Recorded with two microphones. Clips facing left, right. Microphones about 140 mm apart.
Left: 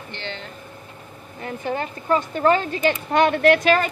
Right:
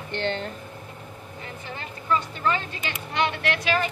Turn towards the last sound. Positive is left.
turn(degrees=50)  # may be behind; listen again after turning